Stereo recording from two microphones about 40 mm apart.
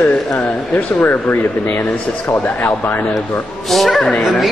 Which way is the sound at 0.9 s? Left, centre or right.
Left.